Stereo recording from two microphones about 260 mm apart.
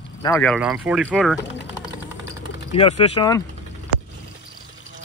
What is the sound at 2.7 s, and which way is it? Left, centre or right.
Speech, left.